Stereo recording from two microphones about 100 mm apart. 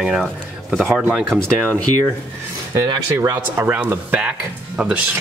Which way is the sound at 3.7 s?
15° right (ahead or behind).